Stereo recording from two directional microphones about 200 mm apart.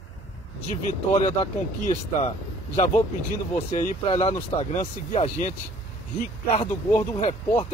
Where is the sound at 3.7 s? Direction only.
35° left (ahead or behind).